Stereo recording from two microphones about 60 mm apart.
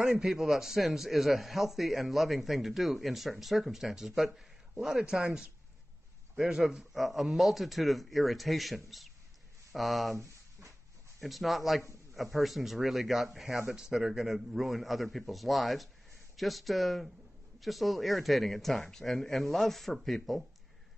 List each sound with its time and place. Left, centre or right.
0.2 s a man's voice: centre
10.1 s a sound: right
11.1 s a man's voice: centre